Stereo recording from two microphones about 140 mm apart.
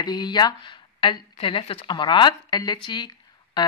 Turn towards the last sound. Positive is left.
turn(degrees=30)  # may be behind; listen again after turning